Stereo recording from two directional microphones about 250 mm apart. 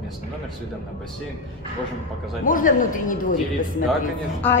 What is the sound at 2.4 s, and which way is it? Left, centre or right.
Speech, left.